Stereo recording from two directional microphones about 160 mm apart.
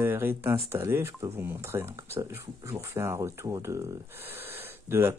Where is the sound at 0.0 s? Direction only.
15° right (ahead or behind).